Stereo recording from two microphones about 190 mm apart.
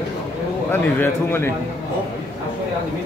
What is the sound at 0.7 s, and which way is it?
Speech, 10° left (ahead or behind).